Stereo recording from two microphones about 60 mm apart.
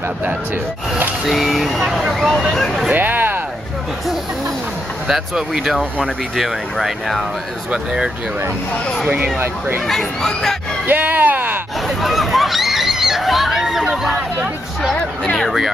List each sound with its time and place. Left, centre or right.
1.2 s speech: centre
2.9 s a sound: right
5.0 s speech: centre
7.7 s speech: centre
9.8 s speech: centre
10.9 s speech: right
12.0 s speech: centre